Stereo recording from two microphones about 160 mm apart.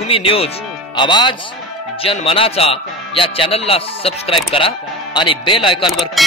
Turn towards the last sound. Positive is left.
turn(degrees=0)  # may be behind; listen again after turning